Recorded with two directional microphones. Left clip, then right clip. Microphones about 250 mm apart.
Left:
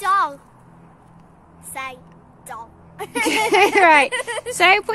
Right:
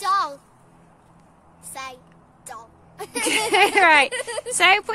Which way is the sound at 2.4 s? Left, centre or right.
Centre.